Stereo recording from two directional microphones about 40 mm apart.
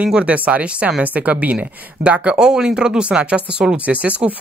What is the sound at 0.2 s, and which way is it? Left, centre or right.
A woman's voice, right.